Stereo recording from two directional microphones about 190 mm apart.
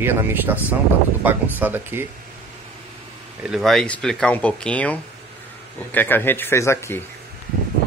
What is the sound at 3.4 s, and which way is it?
Speech, centre (ahead or behind).